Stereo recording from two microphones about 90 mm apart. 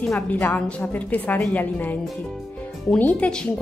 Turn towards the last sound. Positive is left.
turn(degrees=10)  # may be behind; listen again after turning